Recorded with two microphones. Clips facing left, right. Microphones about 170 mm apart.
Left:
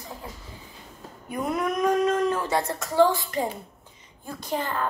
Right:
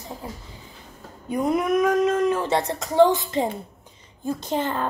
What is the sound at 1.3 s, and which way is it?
Speech, 20° right (ahead or behind).